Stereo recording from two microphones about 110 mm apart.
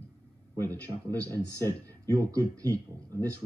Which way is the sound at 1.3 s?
35° right (ahead or behind).